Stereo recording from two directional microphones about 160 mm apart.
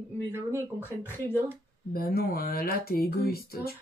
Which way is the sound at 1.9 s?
70° left (ahead or behind).